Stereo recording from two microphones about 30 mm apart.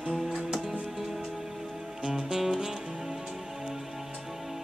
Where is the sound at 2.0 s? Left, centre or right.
Centre.